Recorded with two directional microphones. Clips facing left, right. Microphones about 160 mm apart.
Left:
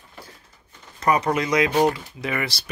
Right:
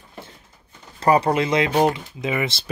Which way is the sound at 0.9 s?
30° right (ahead or behind).